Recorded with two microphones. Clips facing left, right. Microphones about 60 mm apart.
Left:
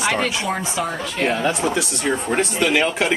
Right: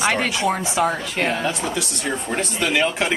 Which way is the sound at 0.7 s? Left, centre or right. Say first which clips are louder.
Right 3 dB; right.